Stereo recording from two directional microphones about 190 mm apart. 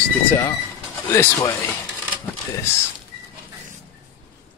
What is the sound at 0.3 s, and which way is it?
Speech, 15° left (ahead or behind).